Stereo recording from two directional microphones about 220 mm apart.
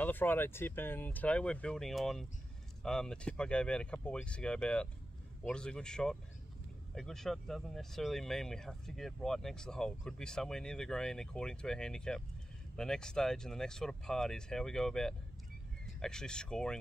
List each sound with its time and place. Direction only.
0.0 s speech: 10° left (ahead or behind)